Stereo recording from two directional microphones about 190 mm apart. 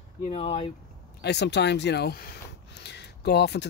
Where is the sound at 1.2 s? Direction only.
65° left (ahead or behind).